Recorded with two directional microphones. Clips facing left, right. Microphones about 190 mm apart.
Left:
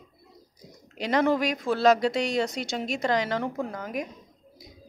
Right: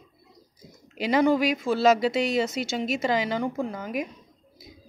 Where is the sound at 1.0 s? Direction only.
Centre (ahead or behind).